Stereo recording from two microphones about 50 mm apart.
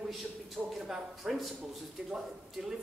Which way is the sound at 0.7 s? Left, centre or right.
Centre.